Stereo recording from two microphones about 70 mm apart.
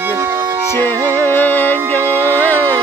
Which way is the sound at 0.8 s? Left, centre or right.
Left.